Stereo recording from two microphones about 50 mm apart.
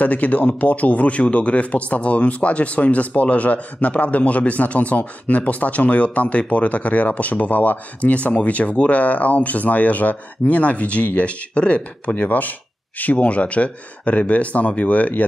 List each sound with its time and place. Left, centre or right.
0.0 s speech: left